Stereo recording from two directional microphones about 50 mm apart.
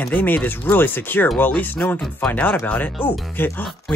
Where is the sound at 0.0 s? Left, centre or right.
Left.